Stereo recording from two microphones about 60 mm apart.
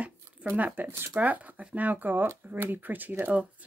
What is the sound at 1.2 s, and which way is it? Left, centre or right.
Speech, right.